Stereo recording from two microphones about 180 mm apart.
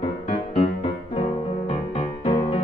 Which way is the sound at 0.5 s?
35° left (ahead or behind).